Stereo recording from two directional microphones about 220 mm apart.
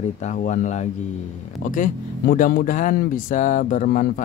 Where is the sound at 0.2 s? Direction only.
35° left (ahead or behind).